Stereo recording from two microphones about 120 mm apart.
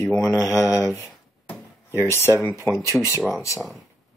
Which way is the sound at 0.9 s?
20° left (ahead or behind).